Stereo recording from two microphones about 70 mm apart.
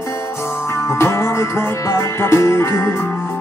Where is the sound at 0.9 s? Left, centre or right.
Left.